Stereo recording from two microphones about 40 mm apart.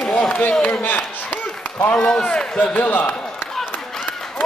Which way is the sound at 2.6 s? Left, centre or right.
Left.